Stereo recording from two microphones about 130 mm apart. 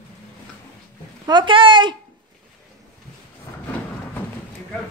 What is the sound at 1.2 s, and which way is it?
Speech, 35° right (ahead or behind).